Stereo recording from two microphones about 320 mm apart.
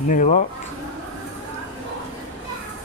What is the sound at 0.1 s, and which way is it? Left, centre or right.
Speech, left.